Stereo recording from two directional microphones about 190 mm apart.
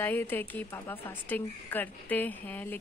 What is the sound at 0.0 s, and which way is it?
A woman's voice, 10° left (ahead or behind).